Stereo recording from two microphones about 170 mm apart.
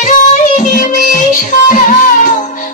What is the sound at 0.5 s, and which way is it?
Music, 45° left (ahead or behind).